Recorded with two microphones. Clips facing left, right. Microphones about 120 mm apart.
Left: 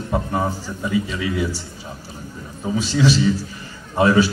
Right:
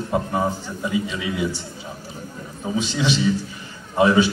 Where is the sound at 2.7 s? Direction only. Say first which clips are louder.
Left 4 dB; 20° right (ahead or behind).